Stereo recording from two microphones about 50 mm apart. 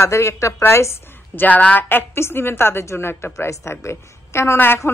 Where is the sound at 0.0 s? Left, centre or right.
Left.